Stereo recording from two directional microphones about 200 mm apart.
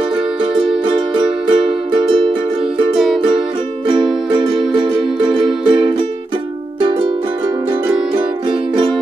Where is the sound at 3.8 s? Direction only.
20° right (ahead or behind).